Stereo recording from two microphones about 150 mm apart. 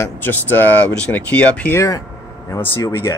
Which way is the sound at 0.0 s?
15° left (ahead or behind).